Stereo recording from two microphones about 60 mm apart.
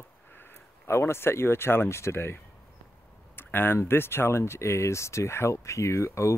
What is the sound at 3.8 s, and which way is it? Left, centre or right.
Speech, left.